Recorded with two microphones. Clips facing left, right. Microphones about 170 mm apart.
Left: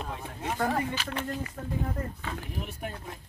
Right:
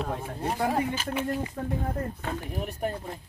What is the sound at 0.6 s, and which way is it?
Speech, 15° right (ahead or behind).